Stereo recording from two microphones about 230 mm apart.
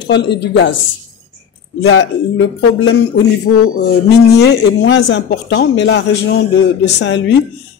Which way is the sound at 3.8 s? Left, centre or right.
Left.